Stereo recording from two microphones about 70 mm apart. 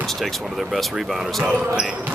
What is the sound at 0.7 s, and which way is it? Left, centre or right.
Speech, centre.